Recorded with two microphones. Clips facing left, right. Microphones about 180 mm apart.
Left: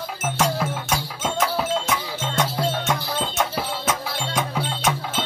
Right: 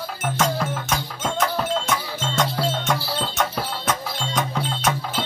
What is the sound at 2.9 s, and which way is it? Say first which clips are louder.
Music: even; 15° left (ahead or behind).